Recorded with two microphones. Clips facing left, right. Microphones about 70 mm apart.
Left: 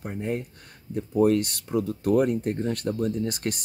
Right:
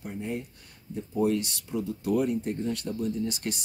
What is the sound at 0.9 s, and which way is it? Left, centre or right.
Speech, left.